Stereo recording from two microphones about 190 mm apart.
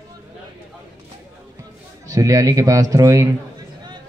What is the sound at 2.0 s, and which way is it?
A man's voice, 15° right (ahead or behind).